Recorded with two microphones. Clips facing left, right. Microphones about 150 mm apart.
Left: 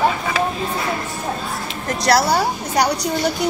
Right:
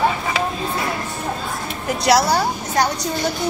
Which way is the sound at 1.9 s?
Centre (ahead or behind).